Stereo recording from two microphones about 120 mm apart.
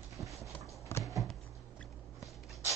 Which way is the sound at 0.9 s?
20° left (ahead or behind).